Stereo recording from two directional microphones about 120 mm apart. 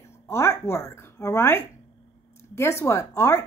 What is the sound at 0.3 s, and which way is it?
Speech, 20° left (ahead or behind).